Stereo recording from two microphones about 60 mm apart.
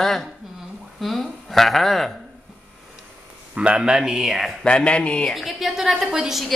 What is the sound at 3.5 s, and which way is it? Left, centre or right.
A man's voice, centre.